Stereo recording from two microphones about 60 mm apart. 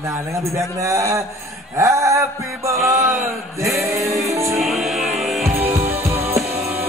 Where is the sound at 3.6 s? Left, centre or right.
Right.